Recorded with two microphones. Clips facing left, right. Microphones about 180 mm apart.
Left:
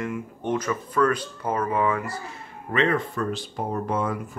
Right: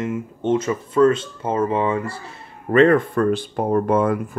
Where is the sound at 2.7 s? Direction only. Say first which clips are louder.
Right 9 dB; 50° right (ahead or behind).